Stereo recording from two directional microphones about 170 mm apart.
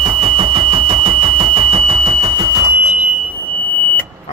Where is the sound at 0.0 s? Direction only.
35° right (ahead or behind).